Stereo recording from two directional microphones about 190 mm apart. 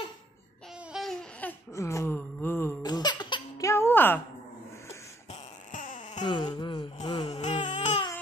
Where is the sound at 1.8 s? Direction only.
15° left (ahead or behind).